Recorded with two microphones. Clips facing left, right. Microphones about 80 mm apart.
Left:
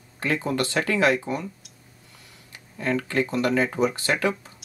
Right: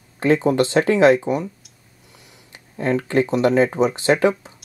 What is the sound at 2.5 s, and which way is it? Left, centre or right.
Speech, right.